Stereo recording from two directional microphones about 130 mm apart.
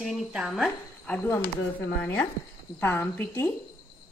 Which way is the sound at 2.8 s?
15° left (ahead or behind).